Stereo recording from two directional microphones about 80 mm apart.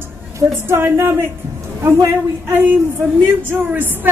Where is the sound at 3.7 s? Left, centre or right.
Right.